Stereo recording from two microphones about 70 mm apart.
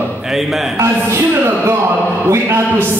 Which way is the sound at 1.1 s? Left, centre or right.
Right.